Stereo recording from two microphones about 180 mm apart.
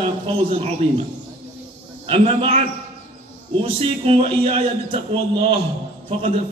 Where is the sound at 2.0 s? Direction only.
35° right (ahead or behind).